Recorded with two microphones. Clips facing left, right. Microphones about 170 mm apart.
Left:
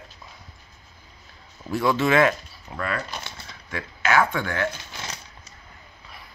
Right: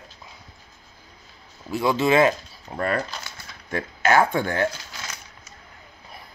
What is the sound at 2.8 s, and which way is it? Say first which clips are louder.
Speech: right 4 dB; 40° right (ahead or behind).